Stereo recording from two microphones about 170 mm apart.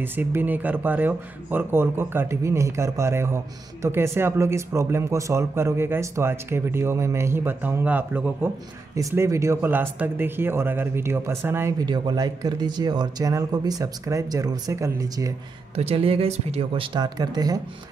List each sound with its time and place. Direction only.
0.0 s speech: 10° right (ahead or behind)
11.8 s speech: 25° right (ahead or behind)
15.7 s speech: 35° right (ahead or behind)